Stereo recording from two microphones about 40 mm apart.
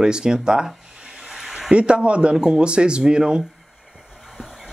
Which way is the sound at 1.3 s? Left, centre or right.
Centre.